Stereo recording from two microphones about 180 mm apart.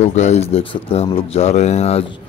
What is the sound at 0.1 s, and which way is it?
Speech, 40° left (ahead or behind).